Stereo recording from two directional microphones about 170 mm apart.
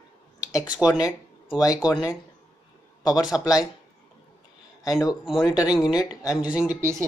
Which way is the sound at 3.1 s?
5° right (ahead or behind).